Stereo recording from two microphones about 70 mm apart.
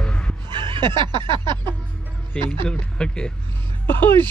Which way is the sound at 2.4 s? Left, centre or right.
Centre.